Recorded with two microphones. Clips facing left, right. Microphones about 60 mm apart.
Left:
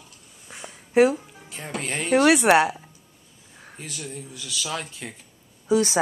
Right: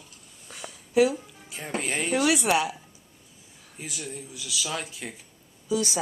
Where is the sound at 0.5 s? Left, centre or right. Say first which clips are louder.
Left 1 dB; left.